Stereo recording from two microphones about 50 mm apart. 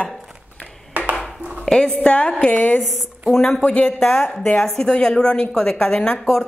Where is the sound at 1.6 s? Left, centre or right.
Centre; by 2.8 s left.